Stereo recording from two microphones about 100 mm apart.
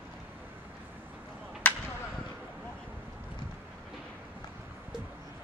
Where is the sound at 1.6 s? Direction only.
15° left (ahead or behind).